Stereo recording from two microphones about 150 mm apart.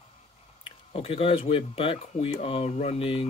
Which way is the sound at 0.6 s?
40° left (ahead or behind).